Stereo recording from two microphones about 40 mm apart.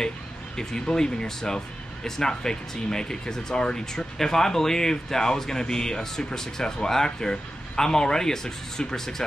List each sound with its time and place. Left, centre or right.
0.6 s speech: centre